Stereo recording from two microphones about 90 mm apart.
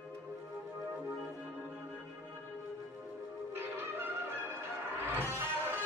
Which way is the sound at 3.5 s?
25° right (ahead or behind).